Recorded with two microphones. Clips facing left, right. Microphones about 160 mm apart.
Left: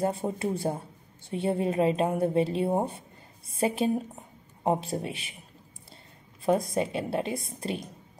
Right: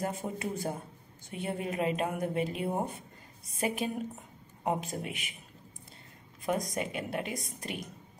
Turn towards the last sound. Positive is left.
turn(degrees=30)  # may be behind; listen again after turning